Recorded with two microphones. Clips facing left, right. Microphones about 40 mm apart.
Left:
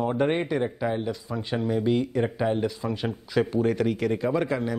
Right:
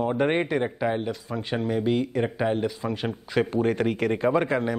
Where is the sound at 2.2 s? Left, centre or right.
Centre.